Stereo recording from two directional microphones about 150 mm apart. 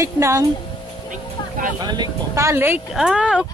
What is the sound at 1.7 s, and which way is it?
Speech, 25° right (ahead or behind).